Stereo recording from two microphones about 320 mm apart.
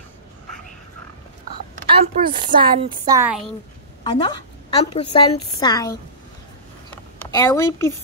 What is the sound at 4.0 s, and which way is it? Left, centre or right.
A woman's voice, centre.